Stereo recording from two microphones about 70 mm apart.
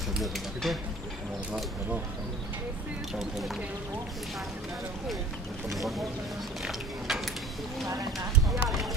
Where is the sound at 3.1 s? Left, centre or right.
Centre.